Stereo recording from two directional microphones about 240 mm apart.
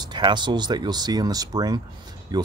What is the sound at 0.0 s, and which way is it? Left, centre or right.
Speech, centre.